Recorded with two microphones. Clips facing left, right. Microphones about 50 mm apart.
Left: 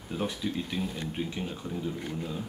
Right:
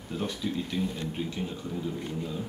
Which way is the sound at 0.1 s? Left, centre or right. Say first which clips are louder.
Even; centre.